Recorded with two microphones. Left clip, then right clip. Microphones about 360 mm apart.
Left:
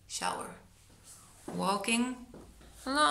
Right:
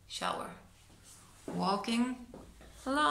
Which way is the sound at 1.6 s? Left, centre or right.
Centre.